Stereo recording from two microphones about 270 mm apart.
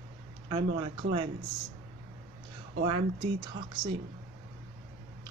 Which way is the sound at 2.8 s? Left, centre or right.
Right.